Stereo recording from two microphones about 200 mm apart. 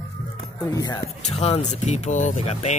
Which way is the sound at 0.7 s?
20° left (ahead or behind).